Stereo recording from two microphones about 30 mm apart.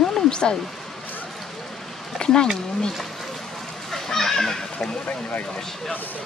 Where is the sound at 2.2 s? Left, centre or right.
Left.